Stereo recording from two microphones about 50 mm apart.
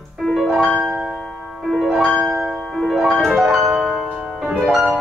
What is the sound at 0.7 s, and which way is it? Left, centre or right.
Music, right.